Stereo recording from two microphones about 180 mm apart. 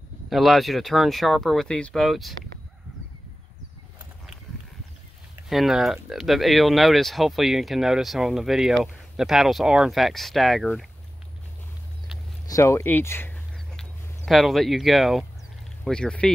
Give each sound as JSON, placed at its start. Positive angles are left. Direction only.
{"t": 0.3, "sound": "speech", "side_deg": 0}
{"t": 5.5, "sound": "speech", "side_deg": 0}
{"t": 12.4, "sound": "speech", "side_deg": 15}